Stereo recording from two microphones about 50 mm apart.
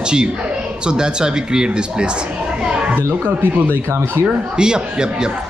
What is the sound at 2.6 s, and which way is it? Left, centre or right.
Children playing, centre.